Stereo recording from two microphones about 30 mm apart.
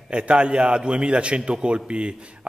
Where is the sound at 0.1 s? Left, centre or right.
Right.